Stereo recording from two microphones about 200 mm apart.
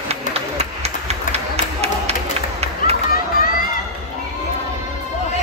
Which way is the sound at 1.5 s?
30° right (ahead or behind).